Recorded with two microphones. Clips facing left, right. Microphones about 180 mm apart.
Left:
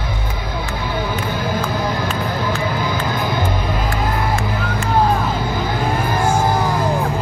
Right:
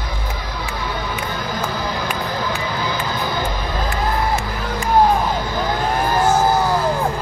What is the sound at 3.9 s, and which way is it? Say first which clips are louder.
Music: right 2 dB; 20° right (ahead or behind).